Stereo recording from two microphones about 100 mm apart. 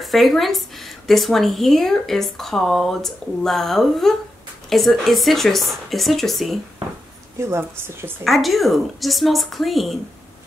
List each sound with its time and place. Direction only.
0.0 s speech: centre (ahead or behind)
7.3 s a woman's voice: 30° right (ahead or behind)
8.2 s speech: centre (ahead or behind)